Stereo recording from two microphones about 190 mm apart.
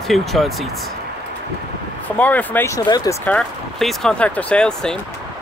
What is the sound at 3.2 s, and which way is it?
Speech, 5° left (ahead or behind).